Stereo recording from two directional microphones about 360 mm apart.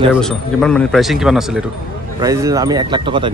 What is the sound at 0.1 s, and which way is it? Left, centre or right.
Speech, centre.